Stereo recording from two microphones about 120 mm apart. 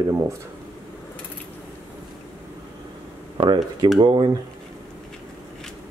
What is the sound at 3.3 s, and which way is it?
Speech, 40° right (ahead or behind).